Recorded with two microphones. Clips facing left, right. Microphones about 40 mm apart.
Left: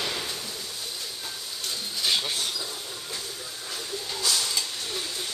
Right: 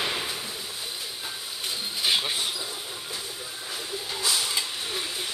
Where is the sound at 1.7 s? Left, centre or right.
Right.